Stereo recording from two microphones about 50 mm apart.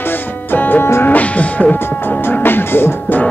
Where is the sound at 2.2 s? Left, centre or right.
Left.